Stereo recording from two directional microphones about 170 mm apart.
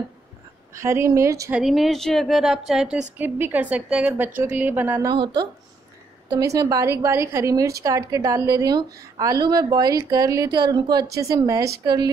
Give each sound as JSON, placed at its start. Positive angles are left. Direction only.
{"t": 0.7, "sound": "a woman's voice", "side_deg": -15}
{"t": 1.5, "sound": "a woman's voice", "side_deg": 0}
{"t": 5.1, "sound": "a woman's voice", "side_deg": -25}